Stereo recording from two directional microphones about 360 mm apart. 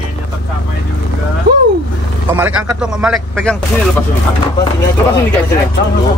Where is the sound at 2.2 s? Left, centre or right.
Centre.